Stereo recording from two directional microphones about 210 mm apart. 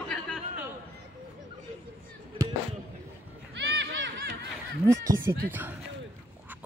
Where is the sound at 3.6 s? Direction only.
60° right (ahead or behind).